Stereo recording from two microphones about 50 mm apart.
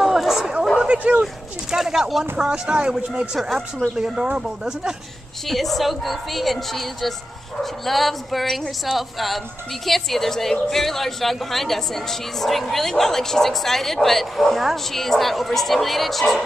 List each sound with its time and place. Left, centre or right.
0.0 s chatter: centre
0.9 s speech: right
1.7 s speech: centre
2.3 s speech: centre
3.3 s a woman's voice: centre
3.9 s speech: centre
5.5 s a woman's voice: centre